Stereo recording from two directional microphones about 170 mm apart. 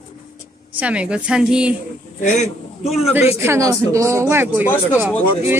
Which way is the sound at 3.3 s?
15° right (ahead or behind).